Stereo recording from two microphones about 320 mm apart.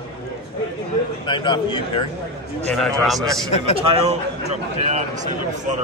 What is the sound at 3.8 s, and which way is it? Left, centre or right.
Speech, centre.